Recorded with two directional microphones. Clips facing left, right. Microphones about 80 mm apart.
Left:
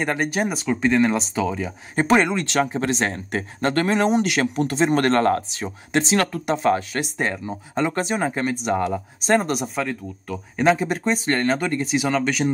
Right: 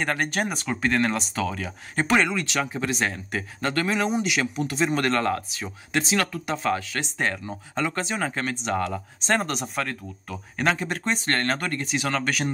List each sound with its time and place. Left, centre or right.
0.0 s speech: centre
2.0 s speech: left
7.0 s speech: centre